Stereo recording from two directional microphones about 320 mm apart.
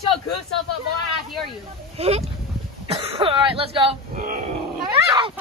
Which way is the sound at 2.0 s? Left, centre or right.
Centre.